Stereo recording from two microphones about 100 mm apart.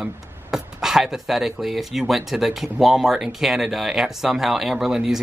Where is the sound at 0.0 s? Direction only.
5° right (ahead or behind).